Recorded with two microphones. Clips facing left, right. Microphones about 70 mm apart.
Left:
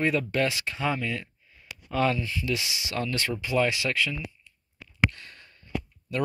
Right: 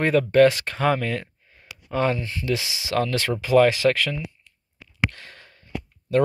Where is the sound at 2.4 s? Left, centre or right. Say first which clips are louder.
Right 4 dB; right.